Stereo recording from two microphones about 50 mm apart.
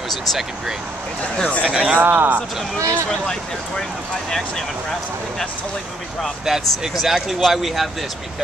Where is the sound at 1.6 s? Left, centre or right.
Right.